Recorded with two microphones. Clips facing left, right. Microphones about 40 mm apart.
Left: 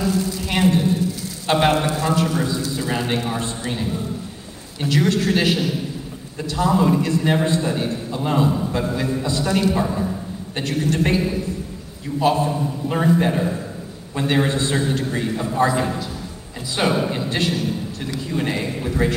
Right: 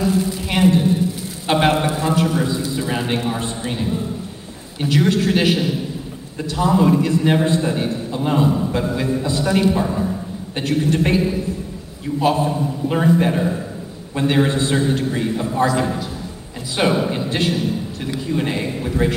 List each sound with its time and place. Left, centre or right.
0.0 s a sound: right
1.5 s a man's voice: right
3.7 s a man's voice: centre
9.5 s a man's voice: right
9.8 s a man's voice: centre
10.6 s a man's voice: right
12.2 s a man's voice: centre
12.4 s a man's voice: centre
15.6 s a man's voice: centre
16.7 s a man's voice: centre
17.3 s a man's voice: centre
18.6 s a man's voice: centre
18.9 s a man's voice: centre